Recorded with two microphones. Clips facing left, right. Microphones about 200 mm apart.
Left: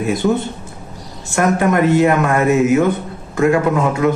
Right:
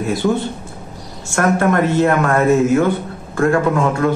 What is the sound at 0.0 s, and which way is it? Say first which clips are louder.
Speech: left 1 dB; 20° left (ahead or behind).